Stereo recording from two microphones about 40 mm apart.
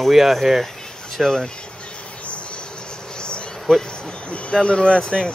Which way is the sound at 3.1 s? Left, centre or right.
Left.